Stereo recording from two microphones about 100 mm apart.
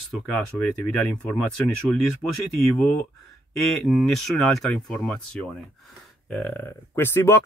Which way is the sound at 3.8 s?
5° left (ahead or behind).